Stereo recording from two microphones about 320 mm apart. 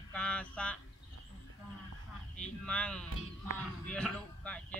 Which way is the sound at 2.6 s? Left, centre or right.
Centre.